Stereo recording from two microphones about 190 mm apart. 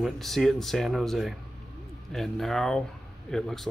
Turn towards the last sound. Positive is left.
turn(degrees=0)  # may be behind; listen again after turning